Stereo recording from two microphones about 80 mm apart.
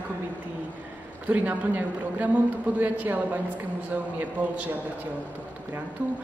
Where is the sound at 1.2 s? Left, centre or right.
Right.